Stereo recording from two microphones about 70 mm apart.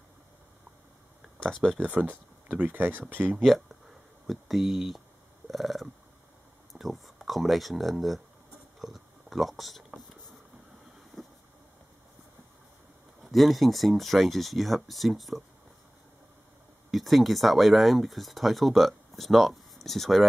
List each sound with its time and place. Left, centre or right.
1.6 s speech: centre
2.0 s speech: right
3.3 s speech: centre
8.7 s a sound: centre
11.1 s vehicle: centre
13.2 s speech: centre
16.9 s speech: centre